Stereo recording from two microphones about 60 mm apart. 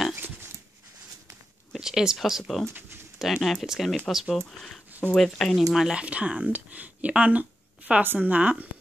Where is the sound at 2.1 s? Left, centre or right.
Centre.